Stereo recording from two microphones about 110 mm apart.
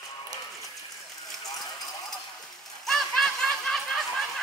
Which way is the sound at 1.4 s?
35° left (ahead or behind).